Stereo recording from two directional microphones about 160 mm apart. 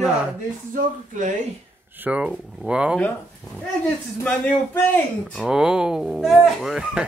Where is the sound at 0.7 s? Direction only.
55° right (ahead or behind).